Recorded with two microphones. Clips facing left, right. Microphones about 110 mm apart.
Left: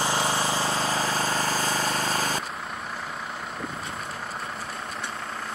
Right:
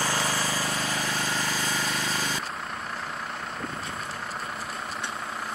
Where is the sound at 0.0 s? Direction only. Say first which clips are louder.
Left 3 dB; 25° left (ahead or behind).